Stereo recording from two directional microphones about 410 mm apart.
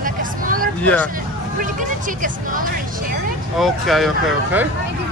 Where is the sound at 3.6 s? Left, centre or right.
Centre.